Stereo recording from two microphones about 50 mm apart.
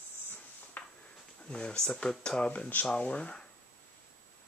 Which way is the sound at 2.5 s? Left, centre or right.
Left.